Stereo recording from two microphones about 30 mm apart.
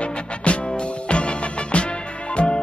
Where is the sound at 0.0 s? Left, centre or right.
Left.